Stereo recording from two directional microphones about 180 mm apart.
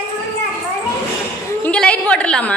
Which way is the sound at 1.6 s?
5° left (ahead or behind).